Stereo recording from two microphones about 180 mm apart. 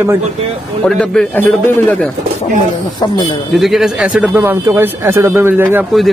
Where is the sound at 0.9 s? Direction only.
5° left (ahead or behind).